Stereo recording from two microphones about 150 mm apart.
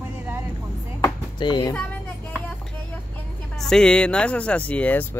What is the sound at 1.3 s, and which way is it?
Speech, 30° left (ahead or behind).